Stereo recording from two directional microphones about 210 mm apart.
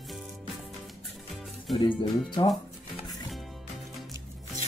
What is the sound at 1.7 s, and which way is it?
Speech, 20° left (ahead or behind).